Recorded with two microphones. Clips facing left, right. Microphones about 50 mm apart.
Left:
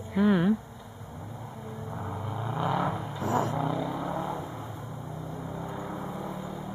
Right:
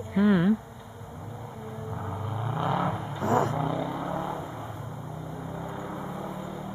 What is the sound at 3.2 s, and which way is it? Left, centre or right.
Vehicle, right.